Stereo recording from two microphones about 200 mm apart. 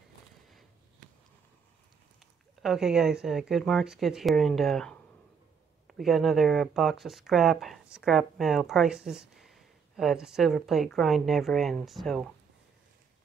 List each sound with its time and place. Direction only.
2.6 s speech: centre (ahead or behind)